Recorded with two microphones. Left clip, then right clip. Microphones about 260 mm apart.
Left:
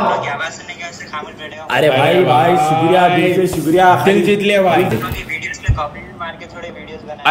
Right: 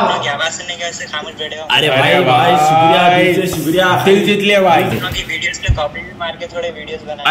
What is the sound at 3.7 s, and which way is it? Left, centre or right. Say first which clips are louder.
Speech: left 2 dB; left.